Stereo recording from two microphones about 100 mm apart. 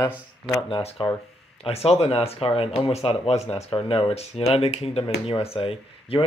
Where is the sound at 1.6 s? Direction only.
90° left; by 6.2 s 65° left (ahead or behind).